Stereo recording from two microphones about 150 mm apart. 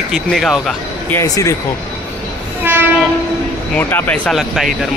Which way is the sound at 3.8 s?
15° left (ahead or behind).